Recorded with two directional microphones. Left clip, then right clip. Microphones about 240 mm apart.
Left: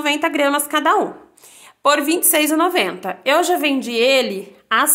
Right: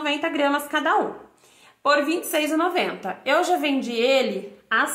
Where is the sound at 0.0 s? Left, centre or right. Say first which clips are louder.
Left 5 dB; left.